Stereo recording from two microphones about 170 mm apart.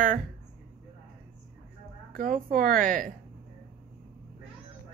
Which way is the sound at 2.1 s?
55° right (ahead or behind).